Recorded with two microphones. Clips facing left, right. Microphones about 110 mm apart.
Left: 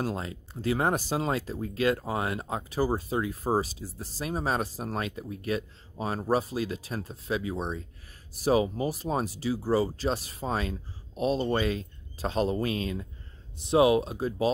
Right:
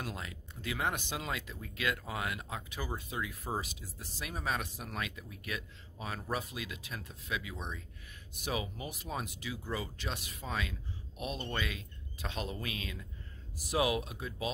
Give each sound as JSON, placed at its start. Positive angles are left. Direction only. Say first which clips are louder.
{"t": 0.0, "sound": "speech", "louder": "left 10 dB", "side_deg": 30}